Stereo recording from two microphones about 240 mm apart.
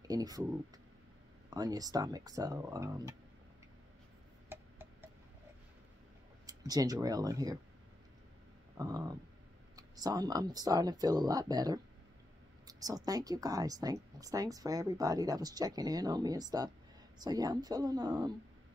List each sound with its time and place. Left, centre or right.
0.1 s a woman's voice: centre
1.5 s a woman's voice: centre
4.5 s a sound: centre
6.4 s speech: centre
8.7 s a woman's voice: centre